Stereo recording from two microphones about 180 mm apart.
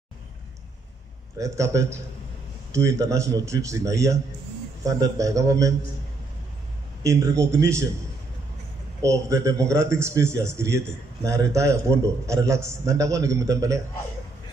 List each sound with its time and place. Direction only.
1.4 s a man's voice: 15° right (ahead or behind)
7.0 s a man's voice: 15° right (ahead or behind)
9.0 s a man's voice: 15° right (ahead or behind)